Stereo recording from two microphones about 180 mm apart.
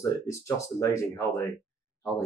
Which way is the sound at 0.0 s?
15° left (ahead or behind).